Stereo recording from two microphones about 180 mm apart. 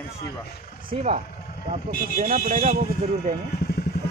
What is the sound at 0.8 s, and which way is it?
Speech, 35° right (ahead or behind).